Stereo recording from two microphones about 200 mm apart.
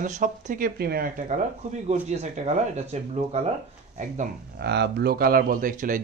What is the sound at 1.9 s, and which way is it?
Speech, 35° right (ahead or behind).